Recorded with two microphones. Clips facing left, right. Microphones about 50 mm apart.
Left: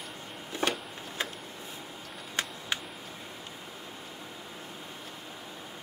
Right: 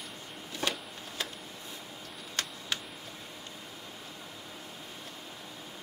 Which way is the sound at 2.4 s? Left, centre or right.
Centre.